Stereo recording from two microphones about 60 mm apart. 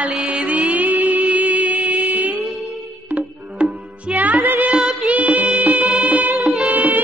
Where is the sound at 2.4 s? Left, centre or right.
Centre.